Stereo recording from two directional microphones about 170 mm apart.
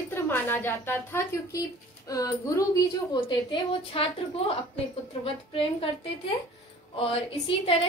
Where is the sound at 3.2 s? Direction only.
30° left (ahead or behind).